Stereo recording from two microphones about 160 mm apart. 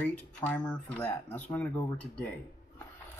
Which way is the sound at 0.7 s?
10° left (ahead or behind).